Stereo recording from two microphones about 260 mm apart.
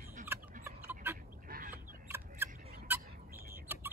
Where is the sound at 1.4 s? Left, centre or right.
Right.